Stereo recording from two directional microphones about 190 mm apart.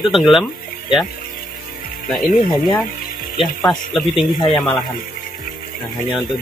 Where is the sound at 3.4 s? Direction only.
Centre (ahead or behind).